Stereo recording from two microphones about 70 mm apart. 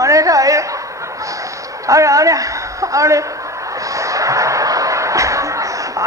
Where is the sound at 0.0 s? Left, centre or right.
Right.